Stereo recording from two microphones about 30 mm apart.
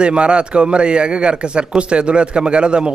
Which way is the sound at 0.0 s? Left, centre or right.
Right.